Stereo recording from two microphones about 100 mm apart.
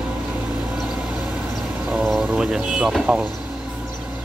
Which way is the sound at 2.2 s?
10° right (ahead or behind).